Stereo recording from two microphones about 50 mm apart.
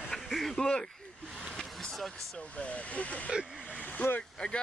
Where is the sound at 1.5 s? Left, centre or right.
Centre.